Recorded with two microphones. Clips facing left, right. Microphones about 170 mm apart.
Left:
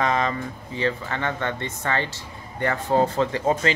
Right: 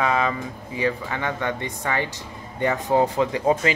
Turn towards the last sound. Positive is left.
turn(degrees=-15)  # may be behind; listen again after turning